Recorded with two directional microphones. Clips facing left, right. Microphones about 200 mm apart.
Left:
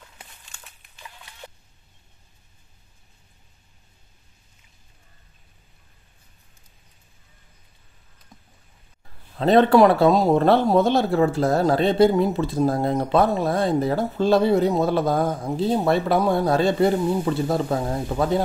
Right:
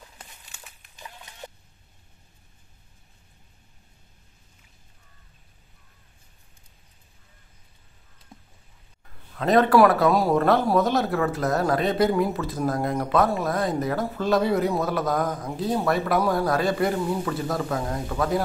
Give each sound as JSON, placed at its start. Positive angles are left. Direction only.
{"t": 8.3, "sound": "rowboat", "side_deg": -30}
{"t": 9.4, "sound": "speech", "side_deg": 25}